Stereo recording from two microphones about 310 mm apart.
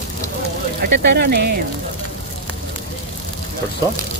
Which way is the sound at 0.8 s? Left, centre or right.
Right.